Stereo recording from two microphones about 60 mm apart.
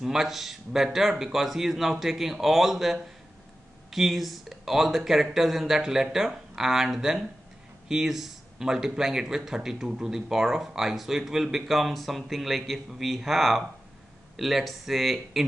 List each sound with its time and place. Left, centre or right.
0.0 s speech: centre